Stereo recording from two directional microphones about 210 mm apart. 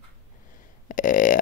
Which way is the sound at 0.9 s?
40° left (ahead or behind).